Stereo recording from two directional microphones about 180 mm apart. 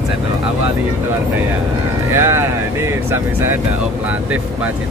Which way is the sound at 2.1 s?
15° right (ahead or behind).